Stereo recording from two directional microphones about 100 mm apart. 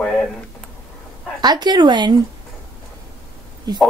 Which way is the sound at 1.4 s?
45° right (ahead or behind).